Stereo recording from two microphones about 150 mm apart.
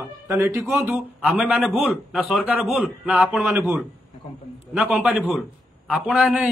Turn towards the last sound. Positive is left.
turn(degrees=-5)  # may be behind; listen again after turning